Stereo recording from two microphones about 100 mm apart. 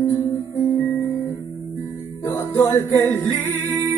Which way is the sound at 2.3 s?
30° left (ahead or behind).